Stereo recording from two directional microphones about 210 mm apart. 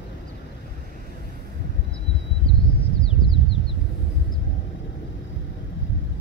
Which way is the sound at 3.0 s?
25° left (ahead or behind).